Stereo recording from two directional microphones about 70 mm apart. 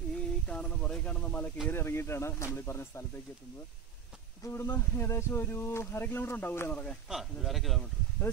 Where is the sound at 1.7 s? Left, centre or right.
Left.